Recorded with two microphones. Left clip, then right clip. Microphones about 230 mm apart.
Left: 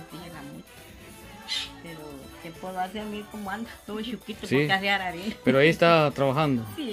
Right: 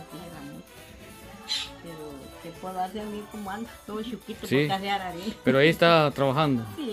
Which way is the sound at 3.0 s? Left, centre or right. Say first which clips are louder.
Even; centre.